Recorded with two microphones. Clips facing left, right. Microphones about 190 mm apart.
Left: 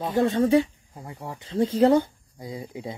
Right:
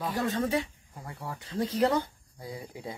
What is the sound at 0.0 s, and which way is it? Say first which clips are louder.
Speech: left 8 dB; 25° left (ahead or behind).